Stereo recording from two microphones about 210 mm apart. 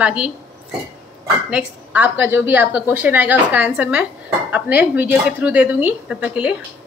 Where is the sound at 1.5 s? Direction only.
5° right (ahead or behind).